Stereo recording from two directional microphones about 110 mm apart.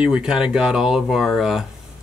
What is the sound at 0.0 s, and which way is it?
Speech, 5° right (ahead or behind).